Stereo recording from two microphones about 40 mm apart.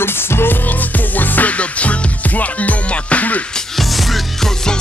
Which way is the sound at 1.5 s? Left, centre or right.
Left.